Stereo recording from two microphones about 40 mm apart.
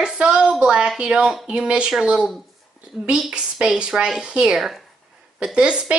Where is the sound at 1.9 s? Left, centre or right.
Centre.